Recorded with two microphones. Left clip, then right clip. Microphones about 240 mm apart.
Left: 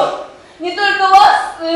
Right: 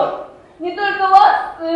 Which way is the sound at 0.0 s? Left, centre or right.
Centre.